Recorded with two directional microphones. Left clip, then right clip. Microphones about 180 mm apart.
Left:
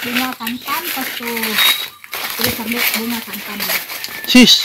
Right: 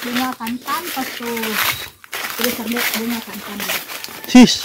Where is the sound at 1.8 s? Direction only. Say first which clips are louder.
Left 2 dB; 5° left (ahead or behind).